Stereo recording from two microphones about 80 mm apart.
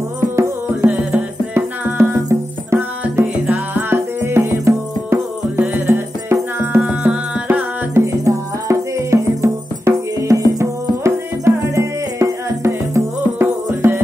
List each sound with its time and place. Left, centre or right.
1.1 s music: right
2.2 s music: right
6.6 s music: right
7.4 s music: right